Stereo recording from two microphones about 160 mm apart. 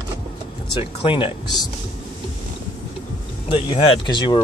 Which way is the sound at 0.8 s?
35° left (ahead or behind).